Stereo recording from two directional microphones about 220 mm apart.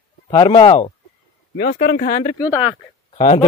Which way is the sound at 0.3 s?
20° left (ahead or behind).